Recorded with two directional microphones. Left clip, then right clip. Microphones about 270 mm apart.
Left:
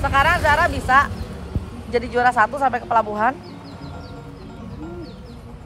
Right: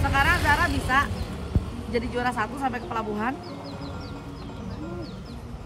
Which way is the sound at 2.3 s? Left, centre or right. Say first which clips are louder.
Left 10 dB; left.